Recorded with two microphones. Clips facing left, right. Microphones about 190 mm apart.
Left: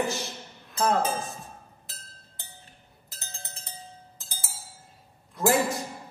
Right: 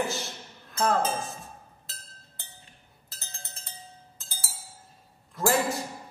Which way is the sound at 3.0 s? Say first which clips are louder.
Left 3 dB; 15° left (ahead or behind).